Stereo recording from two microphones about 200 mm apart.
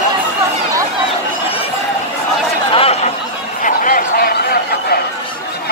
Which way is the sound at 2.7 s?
30° left (ahead or behind).